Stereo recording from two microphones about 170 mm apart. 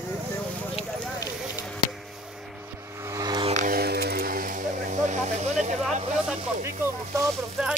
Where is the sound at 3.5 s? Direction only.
45° right (ahead or behind).